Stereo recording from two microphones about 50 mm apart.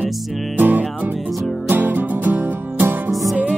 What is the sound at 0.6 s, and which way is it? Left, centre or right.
Music, right.